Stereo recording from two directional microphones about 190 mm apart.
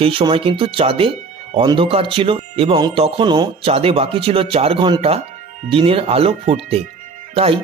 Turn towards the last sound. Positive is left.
turn(degrees=-30)  # may be behind; listen again after turning